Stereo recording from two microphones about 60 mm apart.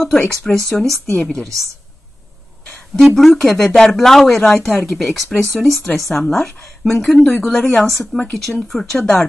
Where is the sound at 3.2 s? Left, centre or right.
Centre.